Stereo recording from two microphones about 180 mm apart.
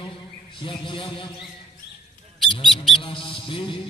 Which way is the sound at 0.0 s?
25° left (ahead or behind).